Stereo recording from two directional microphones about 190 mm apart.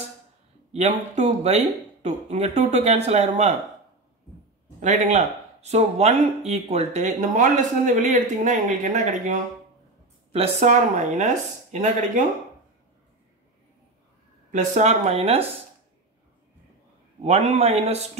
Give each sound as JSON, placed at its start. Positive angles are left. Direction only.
{"t": 0.7, "sound": "speech", "side_deg": -35}
{"t": 4.7, "sound": "speech", "side_deg": -40}
{"t": 14.5, "sound": "speech", "side_deg": -40}
{"t": 17.2, "sound": "speech", "side_deg": -35}